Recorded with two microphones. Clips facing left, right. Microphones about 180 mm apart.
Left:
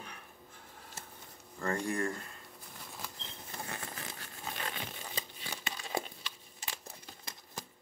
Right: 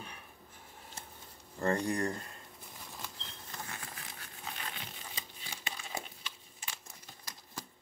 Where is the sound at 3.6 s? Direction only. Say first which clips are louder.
Left 4 dB; 40° left (ahead or behind).